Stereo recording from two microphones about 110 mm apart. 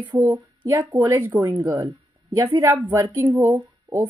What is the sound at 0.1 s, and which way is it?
A woman's voice, 25° right (ahead or behind).